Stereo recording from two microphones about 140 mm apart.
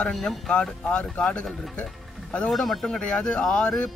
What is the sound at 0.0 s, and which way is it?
Speech, centre (ahead or behind).